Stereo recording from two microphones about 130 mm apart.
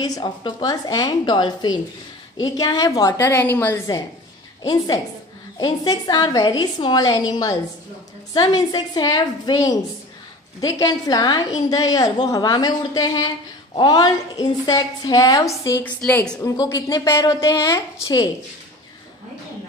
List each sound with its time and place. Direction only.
0.0 s a woman's voice: 35° left (ahead or behind)
3.2 s a woman's voice: 15° left (ahead or behind)
4.6 s a woman's voice: 30° left (ahead or behind)
15.8 s a woman's voice: 10° left (ahead or behind)
16.4 s a woman's voice: 25° left (ahead or behind)